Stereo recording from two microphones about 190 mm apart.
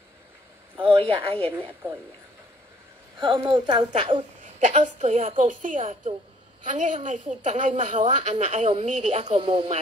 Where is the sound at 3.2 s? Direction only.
25° right (ahead or behind).